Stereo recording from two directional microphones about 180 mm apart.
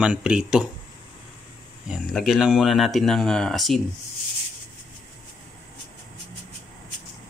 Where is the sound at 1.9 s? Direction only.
Centre (ahead or behind).